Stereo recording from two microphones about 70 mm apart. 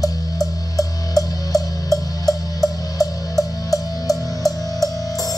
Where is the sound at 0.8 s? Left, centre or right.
Left.